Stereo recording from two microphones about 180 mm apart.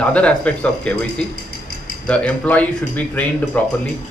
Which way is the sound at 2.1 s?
5° left (ahead or behind).